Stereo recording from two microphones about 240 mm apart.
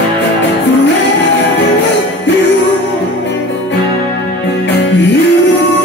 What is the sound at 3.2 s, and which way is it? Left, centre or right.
Music, left.